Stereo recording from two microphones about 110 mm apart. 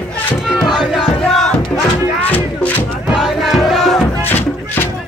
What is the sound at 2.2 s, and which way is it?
Music, 15° left (ahead or behind).